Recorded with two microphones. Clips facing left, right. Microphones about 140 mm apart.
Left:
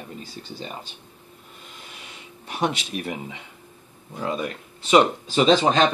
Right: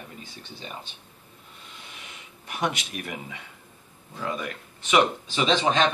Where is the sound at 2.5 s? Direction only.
30° left (ahead or behind).